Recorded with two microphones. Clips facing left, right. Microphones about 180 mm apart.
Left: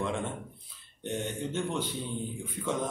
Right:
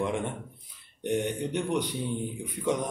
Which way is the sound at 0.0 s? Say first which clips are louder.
Right 3 dB; 15° right (ahead or behind).